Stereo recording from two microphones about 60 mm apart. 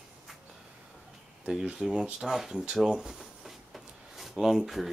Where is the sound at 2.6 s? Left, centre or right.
Centre.